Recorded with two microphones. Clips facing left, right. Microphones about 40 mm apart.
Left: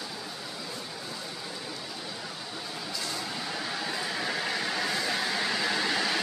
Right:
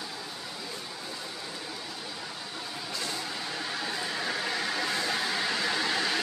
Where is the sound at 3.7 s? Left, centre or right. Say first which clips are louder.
Even; centre.